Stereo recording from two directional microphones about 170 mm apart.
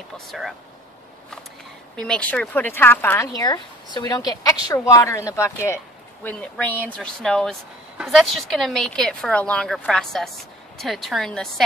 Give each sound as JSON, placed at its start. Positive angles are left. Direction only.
{"t": 0.3, "sound": "speech", "side_deg": 0}
{"t": 2.0, "sound": "speech", "side_deg": 5}